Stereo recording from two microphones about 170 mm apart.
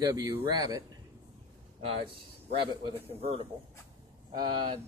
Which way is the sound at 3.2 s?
35° right (ahead or behind).